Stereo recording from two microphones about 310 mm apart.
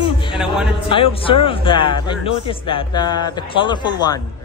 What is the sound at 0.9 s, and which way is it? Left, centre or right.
Speech, centre.